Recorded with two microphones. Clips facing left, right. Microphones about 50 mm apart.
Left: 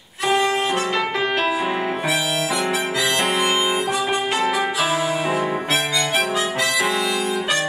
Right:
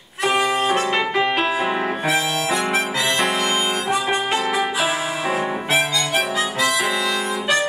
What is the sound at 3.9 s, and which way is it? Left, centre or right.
Music, right.